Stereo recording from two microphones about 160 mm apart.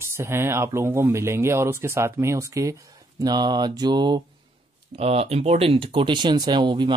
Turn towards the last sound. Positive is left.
turn(degrees=-30)  # may be behind; listen again after turning